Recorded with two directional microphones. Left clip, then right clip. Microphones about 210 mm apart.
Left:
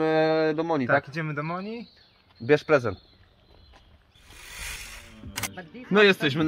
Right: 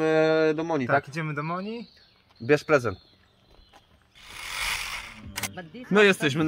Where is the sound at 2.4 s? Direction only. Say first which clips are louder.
Left 1 dB; 10° left (ahead or behind).